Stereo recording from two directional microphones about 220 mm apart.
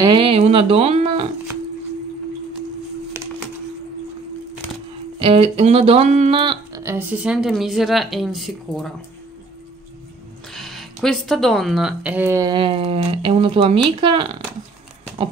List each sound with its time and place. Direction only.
0.0 s speech: 25° right (ahead or behind)
5.2 s speech: 25° right (ahead or behind); by 8.9 s centre (ahead or behind)
10.5 s speech: centre (ahead or behind); by 14.3 s 25° right (ahead or behind)